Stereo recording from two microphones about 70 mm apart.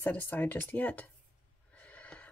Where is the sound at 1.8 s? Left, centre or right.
Left.